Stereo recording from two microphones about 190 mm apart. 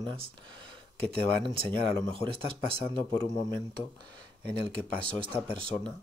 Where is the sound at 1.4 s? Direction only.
30° right (ahead or behind).